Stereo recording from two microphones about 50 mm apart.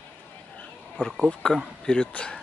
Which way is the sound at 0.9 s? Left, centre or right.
Centre.